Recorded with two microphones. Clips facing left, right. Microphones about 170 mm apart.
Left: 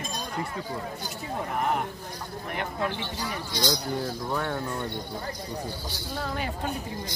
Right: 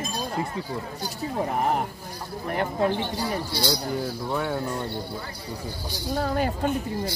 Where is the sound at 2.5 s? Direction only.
40° right (ahead or behind).